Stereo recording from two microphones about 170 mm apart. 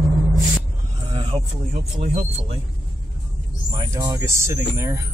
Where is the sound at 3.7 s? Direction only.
20° right (ahead or behind).